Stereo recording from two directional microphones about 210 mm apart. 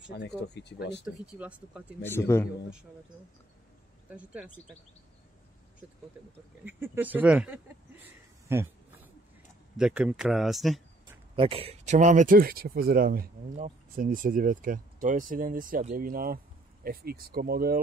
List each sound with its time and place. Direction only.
0.1 s speech: 55° left (ahead or behind)
1.0 s speech: 5° right (ahead or behind)
2.0 s a man's voice: 10° left (ahead or behind)
4.1 s speech: 5° right (ahead or behind)
6.6 s speech: 10° right (ahead or behind)
11.3 s speech: 25° right (ahead or behind); by 17.7 s 45° right (ahead or behind)